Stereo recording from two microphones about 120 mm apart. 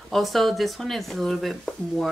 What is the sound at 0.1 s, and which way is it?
Speech, centre (ahead or behind).